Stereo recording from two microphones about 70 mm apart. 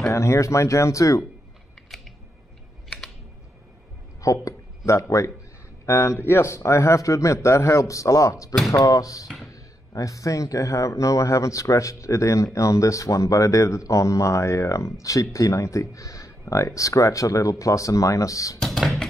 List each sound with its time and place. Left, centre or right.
0.0 s speech: left
4.2 s speech: left
18.6 s music: centre